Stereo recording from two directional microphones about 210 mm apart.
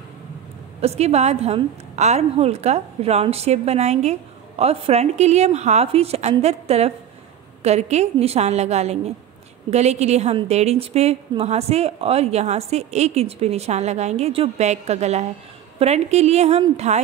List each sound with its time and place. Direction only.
0.7 s a woman's voice: 30° right (ahead or behind)